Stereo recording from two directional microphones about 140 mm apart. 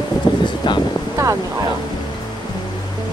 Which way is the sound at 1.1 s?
20° right (ahead or behind).